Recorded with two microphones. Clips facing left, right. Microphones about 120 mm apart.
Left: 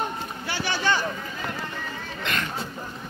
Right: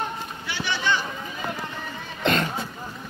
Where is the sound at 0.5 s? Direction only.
40° left (ahead or behind).